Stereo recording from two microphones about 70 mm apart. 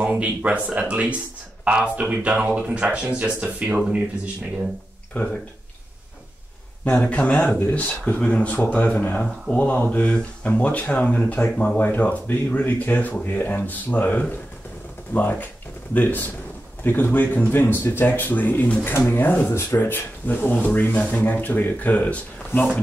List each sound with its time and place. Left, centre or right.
0.0 s speech: right
5.1 s speech: left
6.8 s speech: left